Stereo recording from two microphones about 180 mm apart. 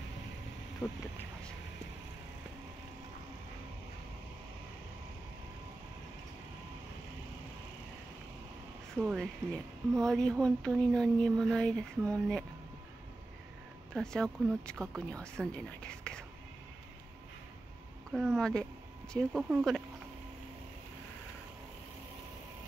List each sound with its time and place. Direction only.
0.8 s speech: 15° left (ahead or behind)
9.0 s speech: centre (ahead or behind)
13.9 s speech: 5° left (ahead or behind)
18.1 s speech: centre (ahead or behind)